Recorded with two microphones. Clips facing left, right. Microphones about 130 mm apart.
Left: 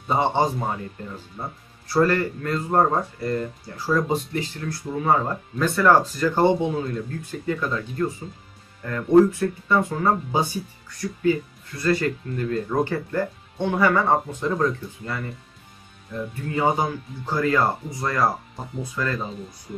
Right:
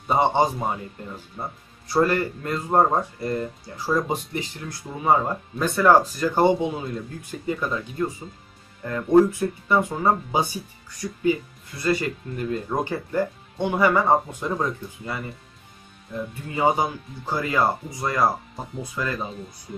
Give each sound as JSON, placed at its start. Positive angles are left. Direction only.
{"t": 0.1, "sound": "speech", "side_deg": -15}